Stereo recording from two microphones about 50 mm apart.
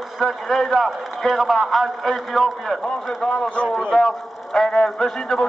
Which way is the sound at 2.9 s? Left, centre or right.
Centre.